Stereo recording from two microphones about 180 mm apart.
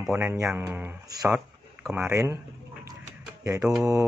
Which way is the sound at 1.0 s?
20° right (ahead or behind).